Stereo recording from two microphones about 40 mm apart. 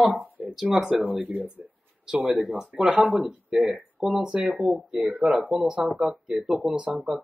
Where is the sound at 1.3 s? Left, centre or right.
Right.